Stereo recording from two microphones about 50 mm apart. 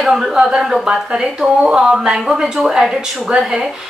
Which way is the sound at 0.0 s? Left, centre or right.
Centre.